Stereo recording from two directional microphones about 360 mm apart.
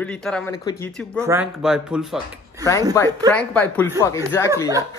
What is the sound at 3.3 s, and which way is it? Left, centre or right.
Speech, centre.